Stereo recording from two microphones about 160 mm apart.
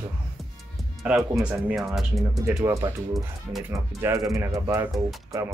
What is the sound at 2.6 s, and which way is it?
Speech, 15° right (ahead or behind).